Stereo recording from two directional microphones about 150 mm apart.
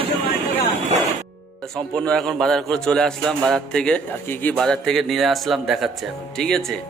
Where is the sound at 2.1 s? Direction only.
5° left (ahead or behind).